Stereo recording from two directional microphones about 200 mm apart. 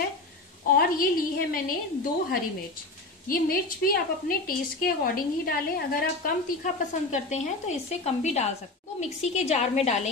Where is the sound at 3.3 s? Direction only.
45° left (ahead or behind).